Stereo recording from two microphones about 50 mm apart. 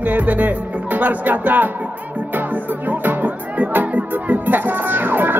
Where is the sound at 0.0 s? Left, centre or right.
Right.